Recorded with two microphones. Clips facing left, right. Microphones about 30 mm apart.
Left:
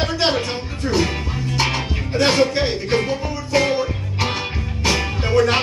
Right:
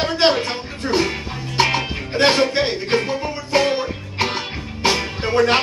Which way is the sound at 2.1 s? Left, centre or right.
Right.